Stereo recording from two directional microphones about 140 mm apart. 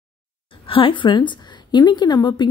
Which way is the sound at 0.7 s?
40° left (ahead or behind).